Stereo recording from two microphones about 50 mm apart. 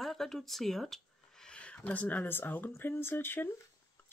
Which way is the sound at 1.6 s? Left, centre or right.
Left.